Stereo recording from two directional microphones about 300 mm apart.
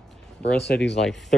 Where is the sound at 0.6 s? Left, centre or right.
Left.